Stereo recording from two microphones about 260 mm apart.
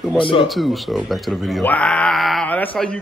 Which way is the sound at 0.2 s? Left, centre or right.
Centre.